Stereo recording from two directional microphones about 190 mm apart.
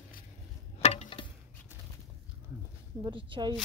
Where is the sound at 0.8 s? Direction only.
35° left (ahead or behind).